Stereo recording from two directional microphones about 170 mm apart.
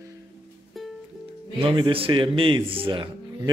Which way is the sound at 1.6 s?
30° right (ahead or behind).